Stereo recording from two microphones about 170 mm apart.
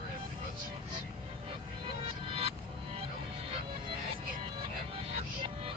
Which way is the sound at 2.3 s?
35° right (ahead or behind).